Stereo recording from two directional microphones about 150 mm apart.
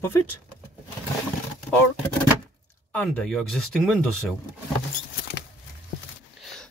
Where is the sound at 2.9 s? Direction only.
10° left (ahead or behind).